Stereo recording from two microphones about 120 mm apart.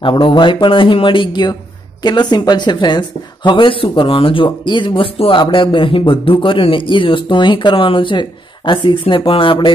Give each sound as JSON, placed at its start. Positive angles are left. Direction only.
{"t": 0.0, "sound": "speech", "side_deg": 40}